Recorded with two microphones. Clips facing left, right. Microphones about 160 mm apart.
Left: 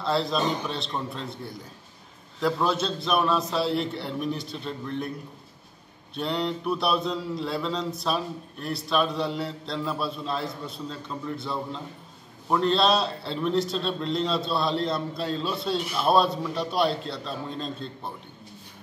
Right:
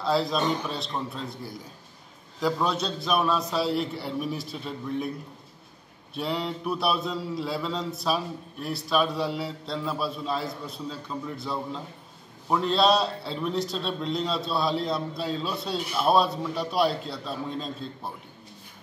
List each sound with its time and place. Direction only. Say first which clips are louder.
0.0 s a man's voice: even; centre (ahead or behind)
6.1 s a man's voice: left 2 dB; centre (ahead or behind)